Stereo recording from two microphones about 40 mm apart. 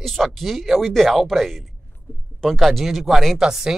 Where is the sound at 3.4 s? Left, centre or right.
Centre.